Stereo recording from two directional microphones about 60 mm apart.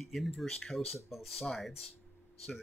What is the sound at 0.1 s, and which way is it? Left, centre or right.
Speech, centre.